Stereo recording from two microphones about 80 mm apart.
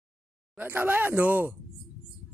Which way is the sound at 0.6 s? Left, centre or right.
Right.